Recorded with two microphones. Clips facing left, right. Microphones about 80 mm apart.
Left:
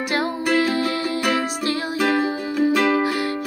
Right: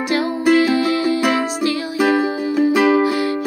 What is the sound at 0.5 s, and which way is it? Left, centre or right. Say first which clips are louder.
Music: right 7 dB; centre.